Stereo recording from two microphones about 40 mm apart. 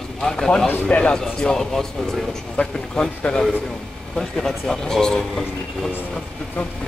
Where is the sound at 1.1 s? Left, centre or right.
Centre.